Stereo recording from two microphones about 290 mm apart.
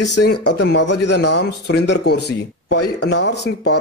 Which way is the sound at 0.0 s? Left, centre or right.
Left.